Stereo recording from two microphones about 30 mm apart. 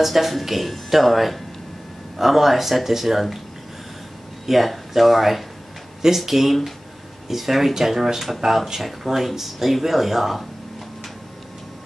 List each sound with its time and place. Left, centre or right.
0.0 s speech: centre
4.5 s speech: centre